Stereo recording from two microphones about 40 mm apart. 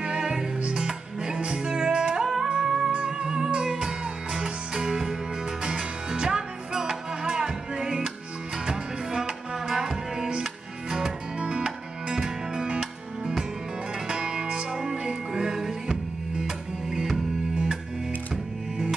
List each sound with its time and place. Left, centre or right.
0.0 s music: centre
11.3 s music: right
18.3 s music: centre